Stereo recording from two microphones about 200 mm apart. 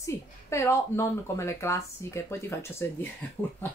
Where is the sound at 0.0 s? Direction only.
15° left (ahead or behind).